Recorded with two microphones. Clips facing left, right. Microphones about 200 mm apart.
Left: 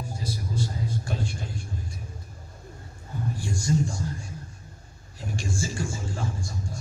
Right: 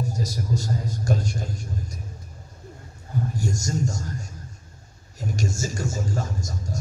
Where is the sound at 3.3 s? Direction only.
45° right (ahead or behind).